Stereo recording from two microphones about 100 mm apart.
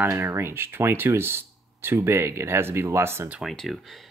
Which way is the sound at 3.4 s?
Centre (ahead or behind).